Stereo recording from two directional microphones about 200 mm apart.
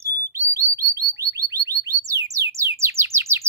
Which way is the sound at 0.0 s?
15° right (ahead or behind).